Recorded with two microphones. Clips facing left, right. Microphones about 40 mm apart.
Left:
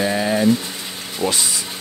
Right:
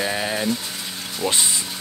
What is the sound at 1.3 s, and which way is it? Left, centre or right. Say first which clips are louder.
Speech: even; right.